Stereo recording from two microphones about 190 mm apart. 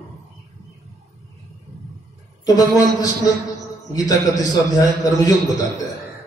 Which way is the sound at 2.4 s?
20° left (ahead or behind).